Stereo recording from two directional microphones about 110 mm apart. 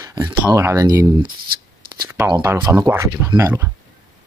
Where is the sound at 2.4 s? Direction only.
25° right (ahead or behind).